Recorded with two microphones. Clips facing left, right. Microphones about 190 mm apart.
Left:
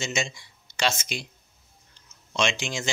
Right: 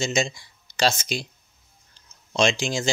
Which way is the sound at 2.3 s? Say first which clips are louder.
Right 5 dB; 35° right (ahead or behind).